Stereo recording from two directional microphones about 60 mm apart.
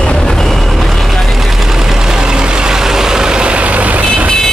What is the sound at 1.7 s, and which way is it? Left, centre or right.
Vehicle, centre.